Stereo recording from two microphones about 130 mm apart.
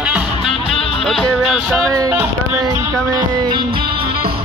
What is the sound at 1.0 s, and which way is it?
Music, centre (ahead or behind).